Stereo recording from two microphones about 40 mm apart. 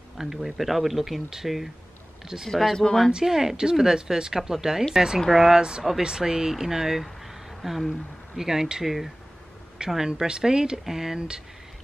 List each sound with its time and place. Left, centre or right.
0.2 s speech: centre
3.3 s speech: centre
11.1 s speech: right